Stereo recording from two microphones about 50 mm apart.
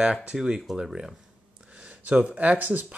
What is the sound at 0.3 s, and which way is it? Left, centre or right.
Speech, centre.